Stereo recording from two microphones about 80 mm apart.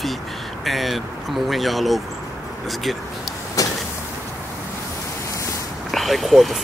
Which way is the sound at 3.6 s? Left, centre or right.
Left.